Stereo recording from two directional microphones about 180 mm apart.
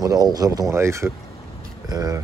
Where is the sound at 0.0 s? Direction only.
20° right (ahead or behind).